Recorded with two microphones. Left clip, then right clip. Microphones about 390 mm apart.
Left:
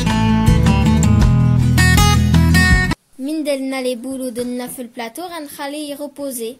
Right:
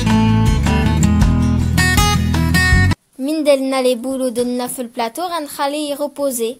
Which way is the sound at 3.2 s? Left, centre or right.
Centre.